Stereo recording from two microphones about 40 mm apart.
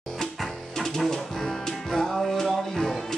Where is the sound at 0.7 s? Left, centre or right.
Centre.